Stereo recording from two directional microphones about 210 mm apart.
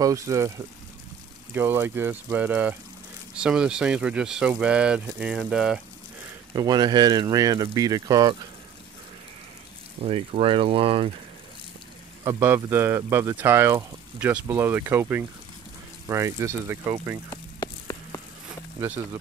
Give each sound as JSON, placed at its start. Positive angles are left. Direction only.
{"t": 0.0, "sound": "speech", "side_deg": -15}
{"t": 1.5, "sound": "speech", "side_deg": -10}
{"t": 6.5, "sound": "speech", "side_deg": -20}
{"t": 10.0, "sound": "speech", "side_deg": -25}
{"t": 12.3, "sound": "speech", "side_deg": -10}
{"t": 17.3, "sound": "a sound", "side_deg": 20}